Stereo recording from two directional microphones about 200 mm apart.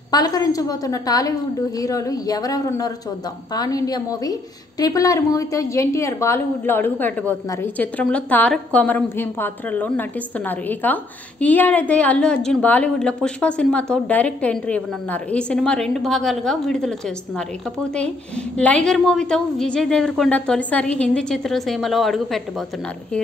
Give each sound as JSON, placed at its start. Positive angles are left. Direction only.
{"t": 0.1, "sound": "a woman's voice", "side_deg": 20}
{"t": 18.6, "sound": "a woman's voice", "side_deg": 5}